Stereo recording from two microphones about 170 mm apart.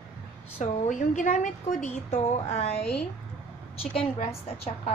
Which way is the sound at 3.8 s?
35° left (ahead or behind).